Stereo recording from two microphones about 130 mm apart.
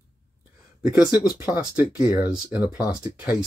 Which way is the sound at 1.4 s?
15° right (ahead or behind).